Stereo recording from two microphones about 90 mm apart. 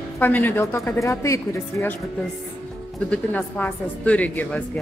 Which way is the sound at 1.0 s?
35° left (ahead or behind).